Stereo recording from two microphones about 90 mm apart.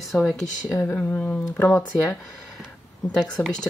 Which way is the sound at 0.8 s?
20° left (ahead or behind).